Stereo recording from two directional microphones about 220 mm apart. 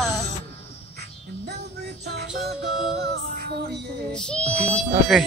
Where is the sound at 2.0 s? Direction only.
45° right (ahead or behind).